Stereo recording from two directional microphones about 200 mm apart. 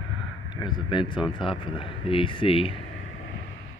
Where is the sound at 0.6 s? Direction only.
25° left (ahead or behind).